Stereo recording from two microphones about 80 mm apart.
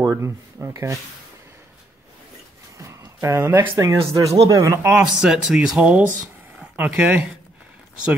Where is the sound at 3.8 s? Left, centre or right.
Right.